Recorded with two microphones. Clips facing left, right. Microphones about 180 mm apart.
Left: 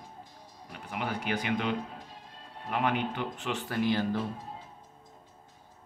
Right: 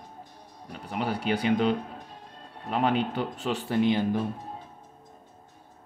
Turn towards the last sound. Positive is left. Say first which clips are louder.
# right 4 dB
turn(degrees=-20)  # may be behind; listen again after turning